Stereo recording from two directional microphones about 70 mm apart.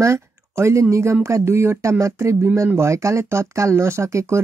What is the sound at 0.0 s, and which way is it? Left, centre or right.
Speech, right.